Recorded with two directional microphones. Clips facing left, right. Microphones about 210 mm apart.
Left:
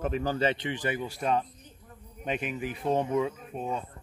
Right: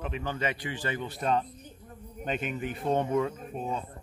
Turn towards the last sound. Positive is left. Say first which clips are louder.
# even
turn(degrees=0)  # may be behind; listen again after turning